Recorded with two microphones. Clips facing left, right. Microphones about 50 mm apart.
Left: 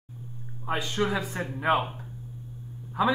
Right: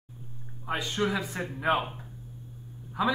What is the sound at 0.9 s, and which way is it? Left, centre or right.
Speech, centre.